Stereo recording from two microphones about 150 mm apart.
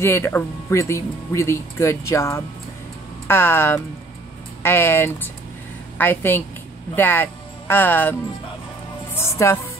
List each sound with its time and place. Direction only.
0.0 s speech: 15° left (ahead or behind)
9.1 s music: 15° left (ahead or behind)